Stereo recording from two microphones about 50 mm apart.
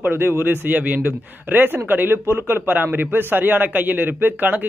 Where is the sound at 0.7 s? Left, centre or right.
Right.